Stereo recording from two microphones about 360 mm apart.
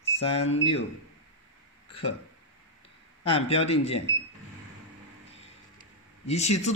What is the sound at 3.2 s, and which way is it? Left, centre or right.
Speech, centre.